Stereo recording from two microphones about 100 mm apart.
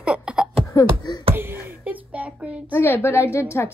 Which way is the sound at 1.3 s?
25° right (ahead or behind).